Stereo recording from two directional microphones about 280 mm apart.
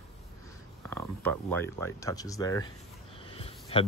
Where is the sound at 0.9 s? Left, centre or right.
Centre.